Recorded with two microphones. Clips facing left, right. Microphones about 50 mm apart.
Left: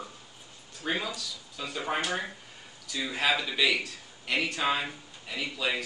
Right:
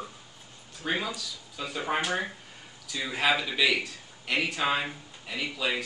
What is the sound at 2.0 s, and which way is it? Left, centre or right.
A man's voice, centre.